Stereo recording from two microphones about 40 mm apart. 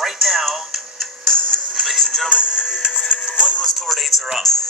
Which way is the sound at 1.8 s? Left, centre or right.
Centre.